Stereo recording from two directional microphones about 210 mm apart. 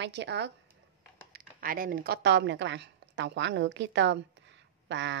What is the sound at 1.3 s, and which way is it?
A woman's voice, 45° right (ahead or behind).